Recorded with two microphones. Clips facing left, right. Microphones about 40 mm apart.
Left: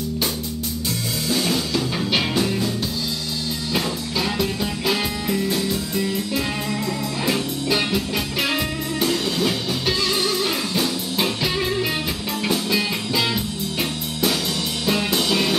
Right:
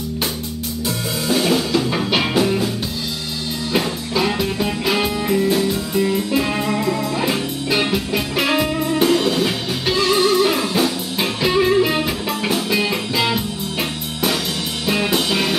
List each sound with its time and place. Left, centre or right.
1.3 s music: centre
3.7 s music: centre